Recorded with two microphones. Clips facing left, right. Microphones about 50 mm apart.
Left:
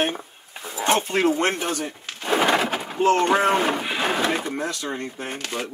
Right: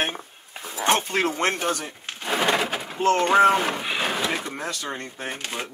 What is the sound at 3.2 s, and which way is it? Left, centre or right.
Speech, centre.